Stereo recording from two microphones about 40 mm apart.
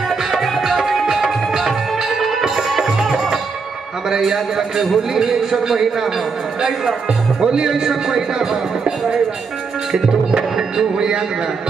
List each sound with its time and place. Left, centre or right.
0.1 s music: centre
4.1 s a man's voice: centre
11.0 s a man's voice: right